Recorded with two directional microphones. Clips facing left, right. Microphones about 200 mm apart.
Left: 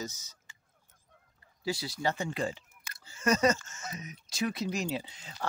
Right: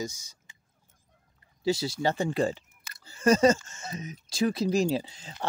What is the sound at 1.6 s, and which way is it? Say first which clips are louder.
Speech: right 6 dB; 25° right (ahead or behind).